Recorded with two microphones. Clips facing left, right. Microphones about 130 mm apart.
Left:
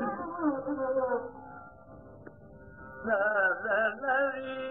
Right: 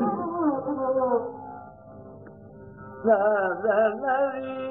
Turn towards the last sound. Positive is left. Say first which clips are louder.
# right 7 dB
turn(degrees=-40)  # may be behind; listen again after turning